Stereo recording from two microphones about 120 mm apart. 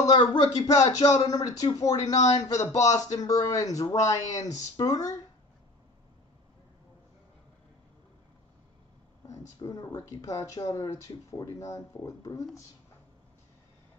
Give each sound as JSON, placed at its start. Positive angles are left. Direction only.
{"t": 0.0, "sound": "speech", "side_deg": 35}
{"t": 9.3, "sound": "speech", "side_deg": 30}